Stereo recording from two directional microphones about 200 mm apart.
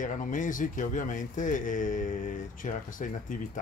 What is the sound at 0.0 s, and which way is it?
Speech, 40° left (ahead or behind).